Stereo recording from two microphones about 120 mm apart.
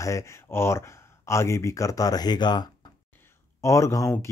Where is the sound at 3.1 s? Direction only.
20° left (ahead or behind).